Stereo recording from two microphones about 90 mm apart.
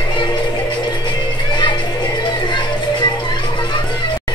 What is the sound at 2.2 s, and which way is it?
Music, 55° left (ahead or behind).